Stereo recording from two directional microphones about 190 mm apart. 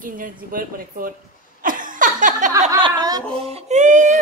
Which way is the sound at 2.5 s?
15° right (ahead or behind).